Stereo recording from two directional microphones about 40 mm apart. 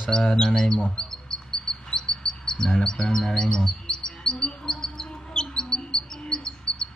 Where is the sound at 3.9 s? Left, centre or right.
Centre.